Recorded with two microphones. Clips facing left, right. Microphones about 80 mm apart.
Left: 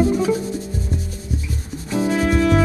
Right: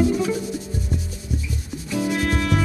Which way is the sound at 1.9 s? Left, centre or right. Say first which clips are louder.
Left 3 dB; left.